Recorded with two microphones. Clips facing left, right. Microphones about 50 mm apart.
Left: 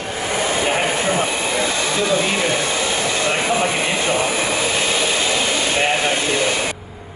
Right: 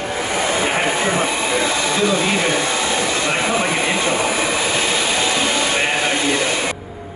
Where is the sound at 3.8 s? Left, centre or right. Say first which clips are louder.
Right 1 dB; right.